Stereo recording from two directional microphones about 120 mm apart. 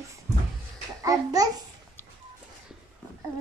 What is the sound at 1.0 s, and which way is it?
Babbling, 30° right (ahead or behind).